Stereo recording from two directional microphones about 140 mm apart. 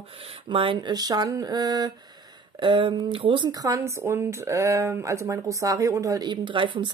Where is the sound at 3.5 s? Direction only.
25° right (ahead or behind).